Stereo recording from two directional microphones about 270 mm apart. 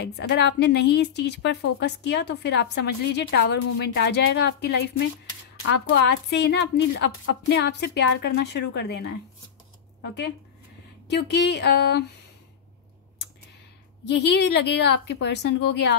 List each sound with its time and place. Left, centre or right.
0.0 s a woman's voice: left
11.1 s a woman's voice: left
14.0 s a woman's voice: left